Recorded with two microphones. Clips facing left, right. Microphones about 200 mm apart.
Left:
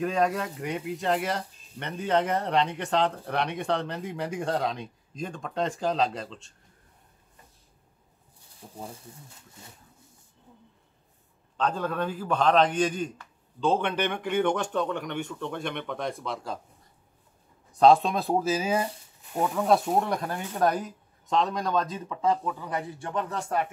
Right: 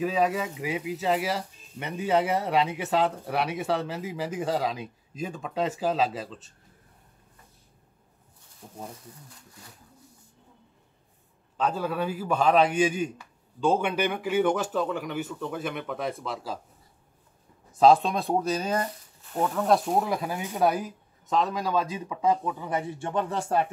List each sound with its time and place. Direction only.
0.0 s speech: 5° right (ahead or behind)
8.6 s speech: centre (ahead or behind)
8.9 s speech: 25° left (ahead or behind)
11.5 s speech: 10° right (ahead or behind)
17.7 s speech: centre (ahead or behind); by 23.4 s 30° right (ahead or behind)